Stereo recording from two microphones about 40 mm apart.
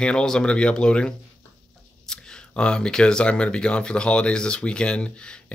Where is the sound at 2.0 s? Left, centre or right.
Centre.